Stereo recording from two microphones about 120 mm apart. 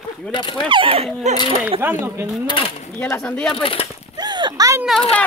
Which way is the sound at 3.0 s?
20° left (ahead or behind).